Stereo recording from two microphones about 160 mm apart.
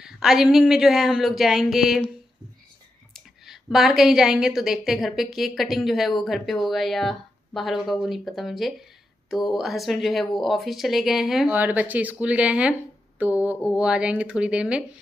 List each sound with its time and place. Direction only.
0.0 s a woman's voice: 5° right (ahead or behind)
3.1 s a woman's voice: centre (ahead or behind)